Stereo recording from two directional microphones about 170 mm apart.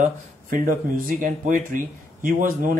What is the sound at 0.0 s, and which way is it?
Speech, 55° right (ahead or behind).